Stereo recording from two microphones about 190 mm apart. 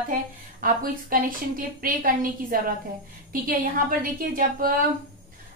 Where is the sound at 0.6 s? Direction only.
45° right (ahead or behind).